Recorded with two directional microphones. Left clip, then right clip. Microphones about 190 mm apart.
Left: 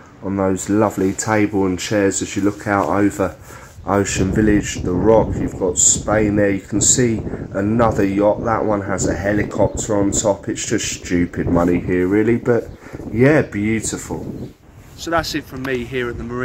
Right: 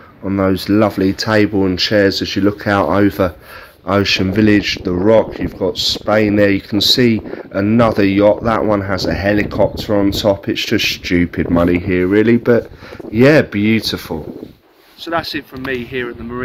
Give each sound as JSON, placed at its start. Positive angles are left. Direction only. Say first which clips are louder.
{"t": 0.2, "sound": "speech", "louder": "right 3 dB", "side_deg": -15}
{"t": 3.8, "sound": "speech", "louder": "right 4 dB", "side_deg": -10}
{"t": 15.0, "sound": "speech", "louder": "even", "side_deg": 10}